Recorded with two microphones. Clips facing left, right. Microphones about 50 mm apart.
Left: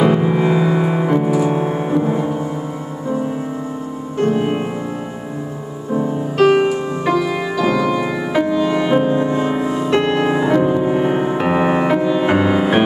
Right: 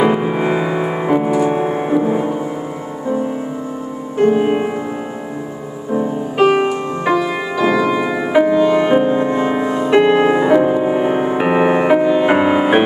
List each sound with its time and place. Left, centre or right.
0.0 s music: centre
4.2 s music: centre
5.9 s music: centre
9.8 s music: centre